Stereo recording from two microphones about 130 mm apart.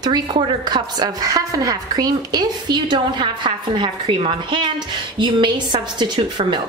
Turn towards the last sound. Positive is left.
turn(degrees=-35)  # may be behind; listen again after turning